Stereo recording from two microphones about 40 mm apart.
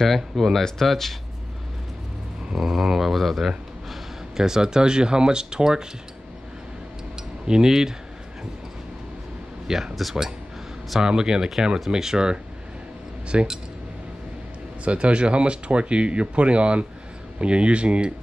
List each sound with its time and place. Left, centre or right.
0.0 s speech: centre
2.5 s speech: centre
7.4 s speech: centre
9.7 s speech: centre
11.0 s speech: centre
14.9 s speech: right